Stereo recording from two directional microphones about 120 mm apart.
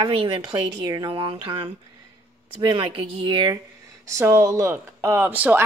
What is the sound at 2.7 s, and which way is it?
Speech, 40° right (ahead or behind).